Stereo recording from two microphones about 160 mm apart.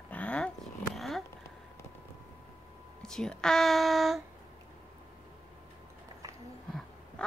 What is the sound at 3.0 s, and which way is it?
Speech, 5° left (ahead or behind).